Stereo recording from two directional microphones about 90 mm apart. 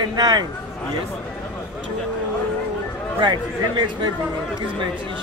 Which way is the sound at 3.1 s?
60° right (ahead or behind).